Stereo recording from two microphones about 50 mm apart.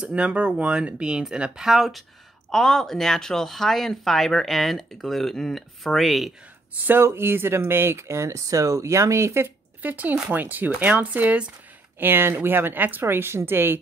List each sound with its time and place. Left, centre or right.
0.0 s speech: right; by 2.0 s centre
2.5 s speech: centre
6.7 s speech: right
7.0 s speech: right
9.8 s speech: right
12.0 s speech: right
13.0 s speech: right